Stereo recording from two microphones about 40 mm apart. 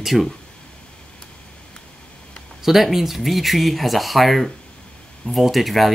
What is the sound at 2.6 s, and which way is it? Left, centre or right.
Speech, centre.